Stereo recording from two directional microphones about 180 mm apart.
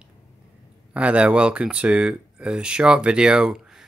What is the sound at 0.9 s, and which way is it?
Speech, 5° right (ahead or behind).